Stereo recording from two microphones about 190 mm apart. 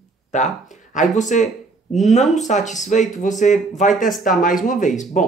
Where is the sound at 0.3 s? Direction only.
40° left (ahead or behind).